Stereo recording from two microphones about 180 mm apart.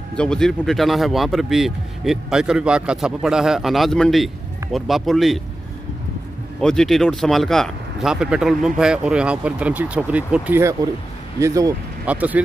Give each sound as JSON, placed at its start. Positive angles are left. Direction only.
{"t": 0.1, "sound": "speech", "side_deg": 5}
{"t": 6.6, "sound": "speech", "side_deg": 5}